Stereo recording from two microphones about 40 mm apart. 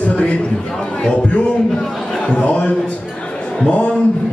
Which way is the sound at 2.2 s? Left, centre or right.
Left.